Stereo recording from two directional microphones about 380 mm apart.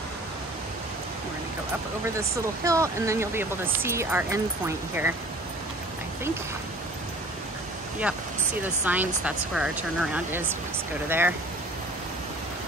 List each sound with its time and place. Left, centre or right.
2.1 s speech: centre
8.8 s speech: centre